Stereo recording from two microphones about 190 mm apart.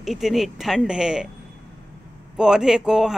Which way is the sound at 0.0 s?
Centre (ahead or behind).